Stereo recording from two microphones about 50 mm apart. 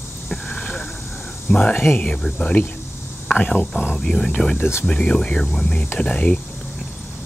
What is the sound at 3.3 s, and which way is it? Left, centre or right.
Speech, left.